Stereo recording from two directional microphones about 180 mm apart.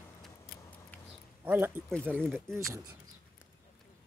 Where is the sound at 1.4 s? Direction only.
10° right (ahead or behind).